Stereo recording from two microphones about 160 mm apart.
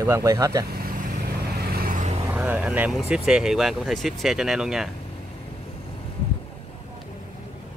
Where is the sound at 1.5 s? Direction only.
75° right (ahead or behind).